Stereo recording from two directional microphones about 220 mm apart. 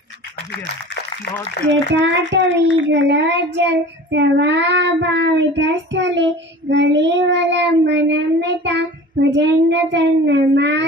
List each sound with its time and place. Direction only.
1.6 s a child's voice: 55° right (ahead or behind)